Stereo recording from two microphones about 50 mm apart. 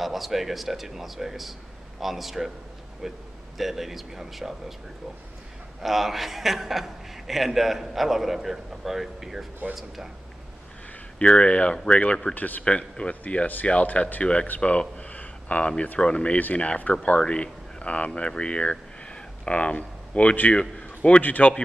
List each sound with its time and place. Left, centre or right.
0.0 s a man's voice: centre
5.8 s a man's voice: centre
11.1 s speech: left
12.4 s speech: left
12.6 s speech: left
14.6 s a sound: left
16.0 s speech: centre
20.7 s a sound: centre
21.2 s speech: left